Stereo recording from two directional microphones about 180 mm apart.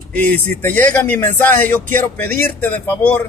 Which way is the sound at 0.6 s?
10° left (ahead or behind).